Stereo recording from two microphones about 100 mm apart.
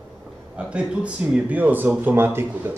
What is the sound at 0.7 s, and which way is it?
Speech, 10° right (ahead or behind).